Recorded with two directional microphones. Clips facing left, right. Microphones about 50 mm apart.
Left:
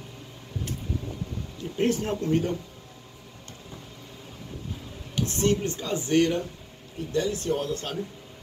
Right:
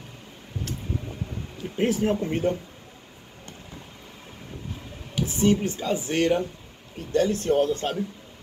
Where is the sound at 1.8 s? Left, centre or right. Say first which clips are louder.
Right 2 dB; centre.